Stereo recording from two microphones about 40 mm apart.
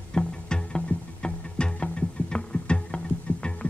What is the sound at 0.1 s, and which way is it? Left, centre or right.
Music, left.